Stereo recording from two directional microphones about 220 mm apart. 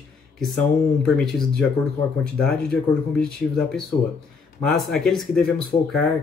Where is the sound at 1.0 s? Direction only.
5° left (ahead or behind).